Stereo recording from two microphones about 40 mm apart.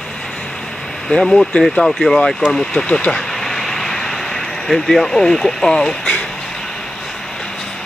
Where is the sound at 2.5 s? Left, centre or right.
Centre.